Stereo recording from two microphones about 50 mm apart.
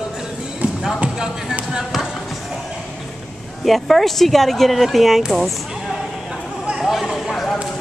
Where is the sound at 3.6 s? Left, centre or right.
Centre.